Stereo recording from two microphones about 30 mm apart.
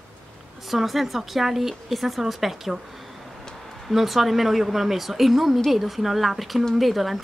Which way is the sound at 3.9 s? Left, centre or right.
Centre.